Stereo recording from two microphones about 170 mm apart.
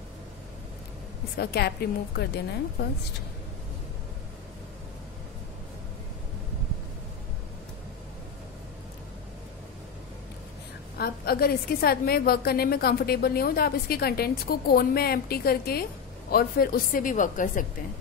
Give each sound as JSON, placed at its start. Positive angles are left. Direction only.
{"t": 1.4, "sound": "speech", "side_deg": 70}
{"t": 11.0, "sound": "a woman's voice", "side_deg": 65}